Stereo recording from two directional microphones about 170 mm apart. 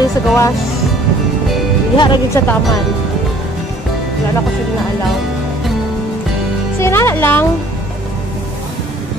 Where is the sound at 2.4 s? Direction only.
15° left (ahead or behind).